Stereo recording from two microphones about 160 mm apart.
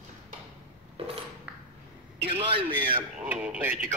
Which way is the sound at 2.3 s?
35° right (ahead or behind).